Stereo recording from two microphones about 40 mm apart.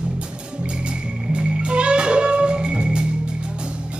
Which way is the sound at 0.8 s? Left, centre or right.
Right.